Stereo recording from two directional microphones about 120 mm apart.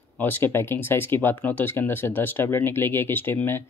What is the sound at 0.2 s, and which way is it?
Speech, 20° left (ahead or behind).